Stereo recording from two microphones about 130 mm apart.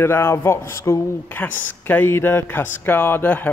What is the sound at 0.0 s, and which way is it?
Speech, 20° left (ahead or behind).